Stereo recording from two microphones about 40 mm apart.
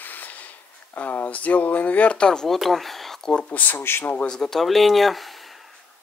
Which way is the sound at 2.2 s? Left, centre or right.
Centre.